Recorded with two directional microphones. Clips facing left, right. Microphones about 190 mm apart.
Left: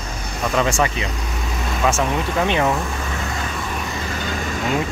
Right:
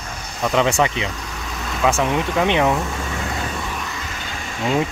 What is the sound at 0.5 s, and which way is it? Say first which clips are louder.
Speech: right 2 dB; 20° right (ahead or behind).